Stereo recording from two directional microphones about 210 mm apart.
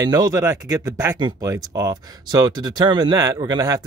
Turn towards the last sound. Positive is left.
turn(degrees=-15)  # may be behind; listen again after turning